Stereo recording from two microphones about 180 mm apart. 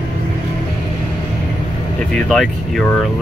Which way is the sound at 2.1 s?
5° left (ahead or behind).